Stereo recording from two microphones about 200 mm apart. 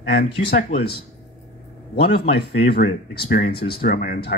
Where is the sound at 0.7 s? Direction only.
55° left (ahead or behind).